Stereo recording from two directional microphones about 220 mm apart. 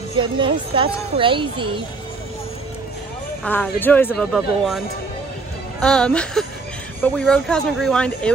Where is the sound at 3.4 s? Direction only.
5° left (ahead or behind).